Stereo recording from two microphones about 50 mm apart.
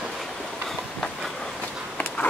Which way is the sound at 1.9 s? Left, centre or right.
Left.